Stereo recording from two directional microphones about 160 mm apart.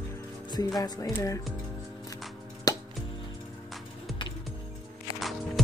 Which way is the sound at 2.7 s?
20° left (ahead or behind).